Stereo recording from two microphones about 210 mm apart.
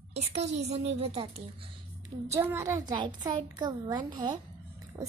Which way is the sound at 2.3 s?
10° right (ahead or behind).